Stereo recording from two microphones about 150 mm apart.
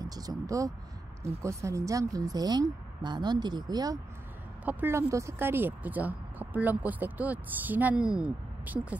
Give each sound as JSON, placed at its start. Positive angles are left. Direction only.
{"t": 0.0, "sound": "speech", "side_deg": -25}
{"t": 4.6, "sound": "speech", "side_deg": -15}